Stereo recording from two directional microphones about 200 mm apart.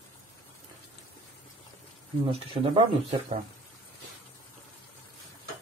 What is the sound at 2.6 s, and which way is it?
Speech, 25° right (ahead or behind).